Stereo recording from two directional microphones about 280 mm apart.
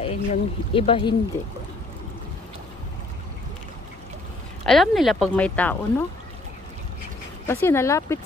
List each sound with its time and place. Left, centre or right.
0.0 s speech: left
4.6 s speech: centre
7.4 s speech: centre